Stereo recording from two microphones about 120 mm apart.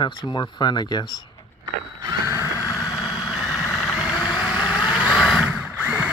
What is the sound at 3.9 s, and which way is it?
Vehicle, 5° right (ahead or behind).